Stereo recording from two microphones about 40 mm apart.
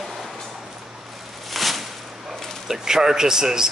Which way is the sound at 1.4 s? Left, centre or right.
Centre.